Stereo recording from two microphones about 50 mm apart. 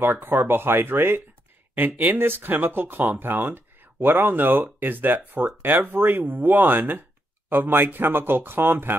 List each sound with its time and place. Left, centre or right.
0.0 s speech: right